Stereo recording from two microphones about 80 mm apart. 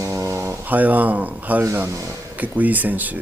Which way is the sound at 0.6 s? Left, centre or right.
Right.